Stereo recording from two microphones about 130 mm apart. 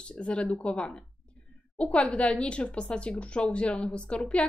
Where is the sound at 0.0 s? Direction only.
10° left (ahead or behind).